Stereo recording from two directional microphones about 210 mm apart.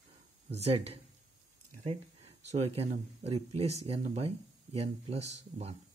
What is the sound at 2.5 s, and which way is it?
Speech, 30° right (ahead or behind).